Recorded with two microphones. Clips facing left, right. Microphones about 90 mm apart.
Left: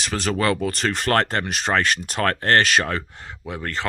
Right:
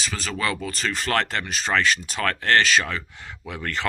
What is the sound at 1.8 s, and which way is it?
Speech, 55° left (ahead or behind).